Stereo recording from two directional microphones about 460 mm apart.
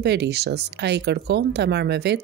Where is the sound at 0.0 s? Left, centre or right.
Right.